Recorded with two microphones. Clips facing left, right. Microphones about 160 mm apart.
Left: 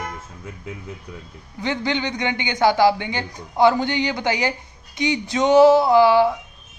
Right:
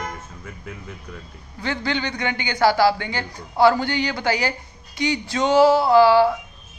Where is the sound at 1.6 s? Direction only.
20° left (ahead or behind).